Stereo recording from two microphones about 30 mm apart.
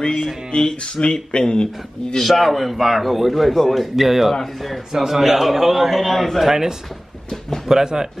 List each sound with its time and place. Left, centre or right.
0.5 s speech: left
2.1 s a man's voice: centre
3.9 s a man's voice: centre
6.4 s speech: centre
7.2 s a sound: centre
7.6 s speech: centre